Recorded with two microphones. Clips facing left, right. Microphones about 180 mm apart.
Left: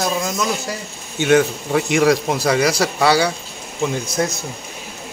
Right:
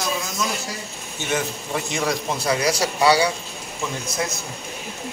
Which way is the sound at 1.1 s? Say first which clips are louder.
Left 11 dB; 85° left.